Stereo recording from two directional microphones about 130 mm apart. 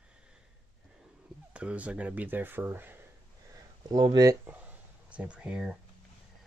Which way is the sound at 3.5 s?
30° right (ahead or behind).